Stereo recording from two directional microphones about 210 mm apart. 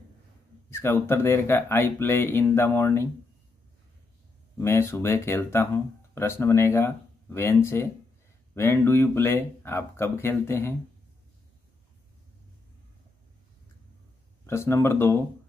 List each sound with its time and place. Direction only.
0.7 s speech: 10° left (ahead or behind)
4.6 s speech: 10° left (ahead or behind)
14.4 s speech: 10° left (ahead or behind)